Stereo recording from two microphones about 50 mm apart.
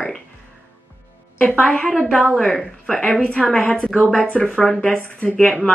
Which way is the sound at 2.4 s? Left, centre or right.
Centre.